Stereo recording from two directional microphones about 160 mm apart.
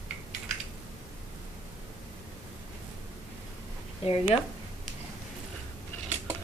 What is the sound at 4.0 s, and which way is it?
Speech, 35° left (ahead or behind).